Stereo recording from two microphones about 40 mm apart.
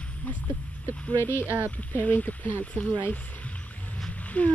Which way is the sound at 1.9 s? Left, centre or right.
Left.